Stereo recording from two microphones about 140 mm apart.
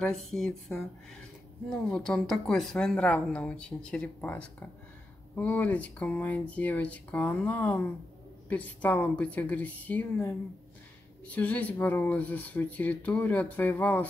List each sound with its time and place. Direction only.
0.0 s speech: 5° left (ahead or behind)